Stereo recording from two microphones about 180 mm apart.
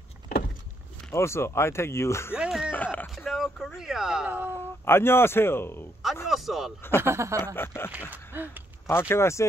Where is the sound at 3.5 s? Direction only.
Centre (ahead or behind).